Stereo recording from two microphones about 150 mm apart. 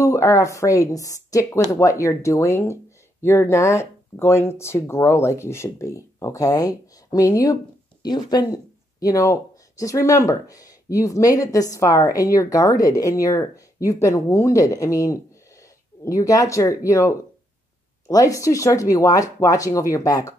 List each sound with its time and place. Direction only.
0.0 s a woman's voice: 20° left (ahead or behind)